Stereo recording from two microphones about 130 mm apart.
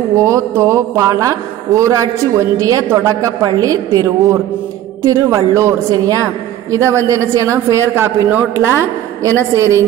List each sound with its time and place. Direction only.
0.1 s a woman's voice: 25° right (ahead or behind)